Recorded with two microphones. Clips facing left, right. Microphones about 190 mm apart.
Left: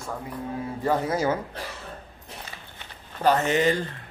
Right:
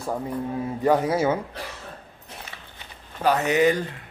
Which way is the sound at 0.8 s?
15° right (ahead or behind).